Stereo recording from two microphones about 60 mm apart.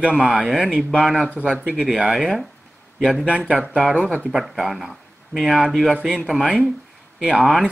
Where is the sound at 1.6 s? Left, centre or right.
Right.